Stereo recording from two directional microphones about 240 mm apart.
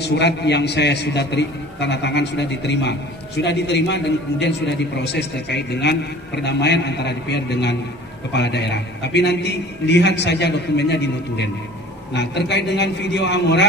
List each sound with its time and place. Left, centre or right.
0.0 s a man's voice: left